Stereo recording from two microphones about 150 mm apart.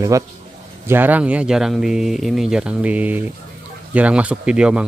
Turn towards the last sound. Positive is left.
turn(degrees=-5)  # may be behind; listen again after turning